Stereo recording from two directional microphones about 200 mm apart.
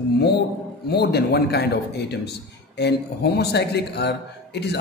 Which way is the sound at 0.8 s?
55° left (ahead or behind).